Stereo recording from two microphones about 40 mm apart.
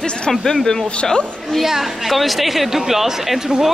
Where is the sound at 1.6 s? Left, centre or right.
Centre.